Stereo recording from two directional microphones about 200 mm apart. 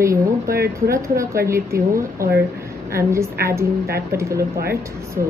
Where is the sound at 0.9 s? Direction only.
15° right (ahead or behind).